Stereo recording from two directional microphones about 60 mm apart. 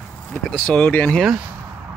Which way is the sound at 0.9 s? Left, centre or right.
Left.